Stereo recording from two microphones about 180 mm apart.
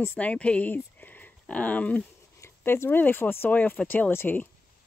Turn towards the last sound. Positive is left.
turn(degrees=10)  # may be behind; listen again after turning